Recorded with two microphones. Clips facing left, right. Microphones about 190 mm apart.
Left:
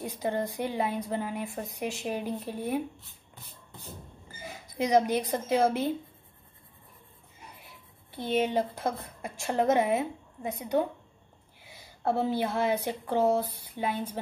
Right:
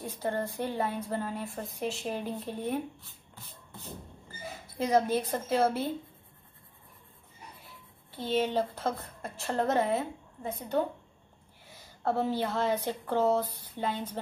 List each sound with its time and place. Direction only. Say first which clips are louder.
0.0 s a woman's voice: left 2 dB; 15° left (ahead or behind)
4.7 s a woman's voice: left 2 dB; 15° left (ahead or behind)
8.2 s a woman's voice: left 1 dB; 15° left (ahead or behind)